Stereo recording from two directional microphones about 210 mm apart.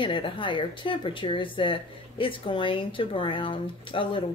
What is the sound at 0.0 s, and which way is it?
Speech, 25° left (ahead or behind).